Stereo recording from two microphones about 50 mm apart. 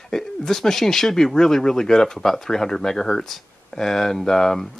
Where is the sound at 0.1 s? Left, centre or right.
Centre.